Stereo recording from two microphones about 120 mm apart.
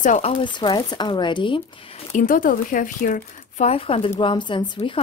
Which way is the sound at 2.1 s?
90° left.